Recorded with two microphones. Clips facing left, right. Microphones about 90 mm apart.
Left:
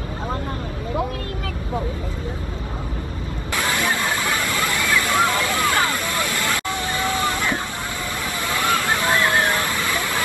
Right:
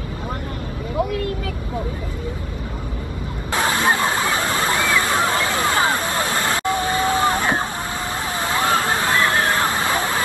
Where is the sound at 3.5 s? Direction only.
30° right (ahead or behind).